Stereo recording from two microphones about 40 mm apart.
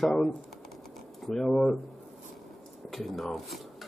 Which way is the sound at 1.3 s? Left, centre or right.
Centre.